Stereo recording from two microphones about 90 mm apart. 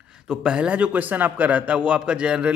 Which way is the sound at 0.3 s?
10° right (ahead or behind).